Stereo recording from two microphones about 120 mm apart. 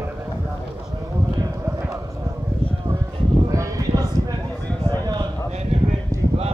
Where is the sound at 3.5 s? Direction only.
30° right (ahead or behind).